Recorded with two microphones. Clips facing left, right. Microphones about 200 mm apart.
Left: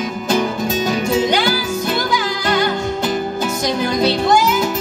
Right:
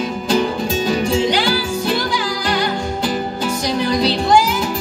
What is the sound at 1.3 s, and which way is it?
Music, 45° left (ahead or behind).